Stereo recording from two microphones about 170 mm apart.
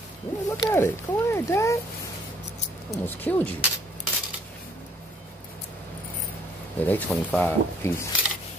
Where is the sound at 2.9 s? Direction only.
10° left (ahead or behind).